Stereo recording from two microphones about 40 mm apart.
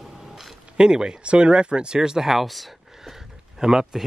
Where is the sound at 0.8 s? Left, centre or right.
Right.